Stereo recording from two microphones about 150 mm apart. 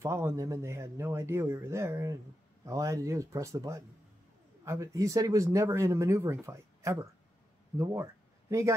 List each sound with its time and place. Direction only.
0.0 s speech: 20° right (ahead or behind)